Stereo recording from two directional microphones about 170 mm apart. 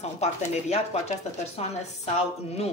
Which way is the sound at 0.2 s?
40° left (ahead or behind).